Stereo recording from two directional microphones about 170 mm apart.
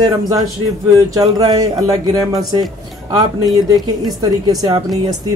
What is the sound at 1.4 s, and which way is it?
Speech, 20° right (ahead or behind).